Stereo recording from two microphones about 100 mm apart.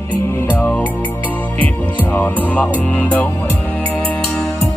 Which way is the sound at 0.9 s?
20° left (ahead or behind).